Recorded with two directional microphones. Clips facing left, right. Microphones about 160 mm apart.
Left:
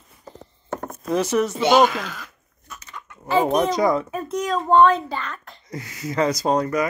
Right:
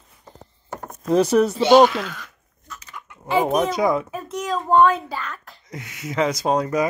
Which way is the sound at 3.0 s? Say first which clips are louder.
Left 1 dB; 15° right (ahead or behind).